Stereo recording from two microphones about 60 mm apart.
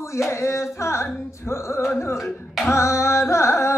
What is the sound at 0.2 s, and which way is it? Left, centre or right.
Music, left.